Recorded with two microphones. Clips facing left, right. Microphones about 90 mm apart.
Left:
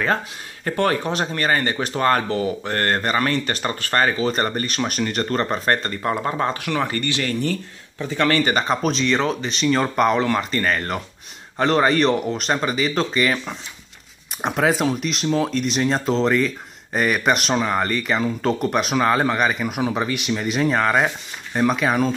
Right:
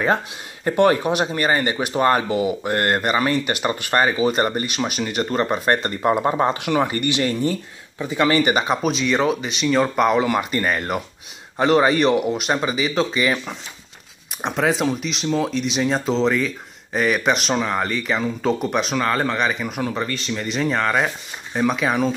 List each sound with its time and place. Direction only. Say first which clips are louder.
0.7 s speech: right 4 dB; 15° right (ahead or behind)
5.8 s speech: right 4 dB; 20° right (ahead or behind); by 22.1 s centre (ahead or behind)